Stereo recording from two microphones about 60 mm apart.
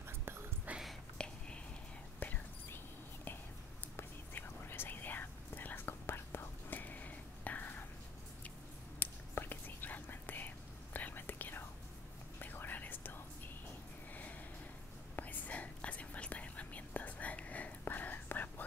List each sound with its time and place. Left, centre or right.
0.0 s whispering: right
0.7 s whispering: right
1.1 s a sound: centre
2.1 s whispering: left
3.9 s whispering: left
6.8 s whispering: left
9.0 s whispering: left
15.1 s whispering: left